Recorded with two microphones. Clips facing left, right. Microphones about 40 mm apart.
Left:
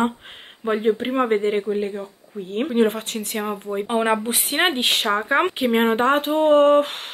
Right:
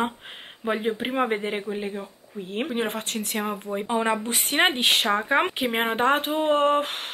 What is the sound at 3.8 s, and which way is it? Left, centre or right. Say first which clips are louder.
Speech: left 4 dB; left.